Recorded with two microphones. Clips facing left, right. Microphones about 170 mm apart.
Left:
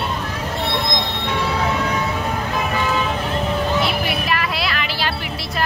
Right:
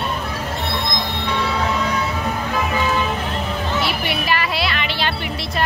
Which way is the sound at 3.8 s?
Centre (ahead or behind).